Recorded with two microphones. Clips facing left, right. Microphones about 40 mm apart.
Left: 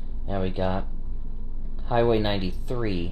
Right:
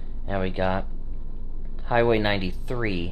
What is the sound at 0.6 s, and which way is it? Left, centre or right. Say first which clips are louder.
Speech: right 3 dB; right.